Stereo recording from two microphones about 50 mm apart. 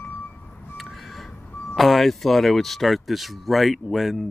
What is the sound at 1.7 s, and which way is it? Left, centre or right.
Speech, centre.